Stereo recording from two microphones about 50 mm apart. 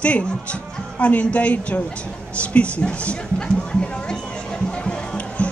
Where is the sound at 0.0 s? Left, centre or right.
Left.